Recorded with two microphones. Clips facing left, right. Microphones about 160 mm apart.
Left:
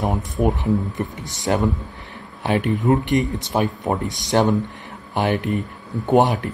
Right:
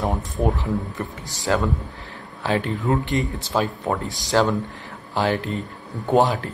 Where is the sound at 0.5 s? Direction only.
20° left (ahead or behind).